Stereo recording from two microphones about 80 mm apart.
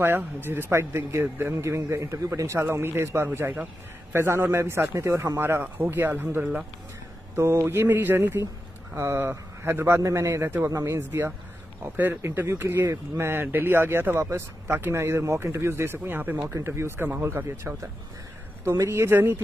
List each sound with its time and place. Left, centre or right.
0.0 s a man's voice: right
16.6 s a man's voice: right